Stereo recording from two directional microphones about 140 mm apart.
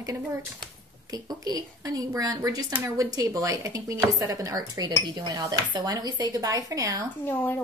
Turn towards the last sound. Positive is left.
turn(degrees=15)  # may be behind; listen again after turning